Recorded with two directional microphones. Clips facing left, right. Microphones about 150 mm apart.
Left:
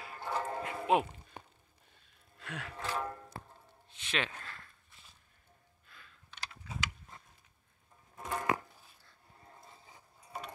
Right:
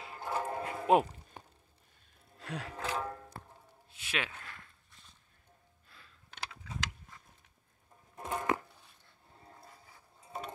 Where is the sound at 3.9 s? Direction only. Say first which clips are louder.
Left 2 dB; 5° right (ahead or behind).